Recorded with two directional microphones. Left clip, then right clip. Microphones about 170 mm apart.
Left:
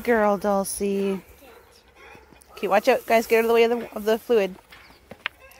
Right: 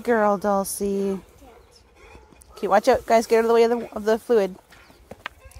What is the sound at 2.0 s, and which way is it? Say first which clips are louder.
Whispering: left 2 dB; 50° right (ahead or behind).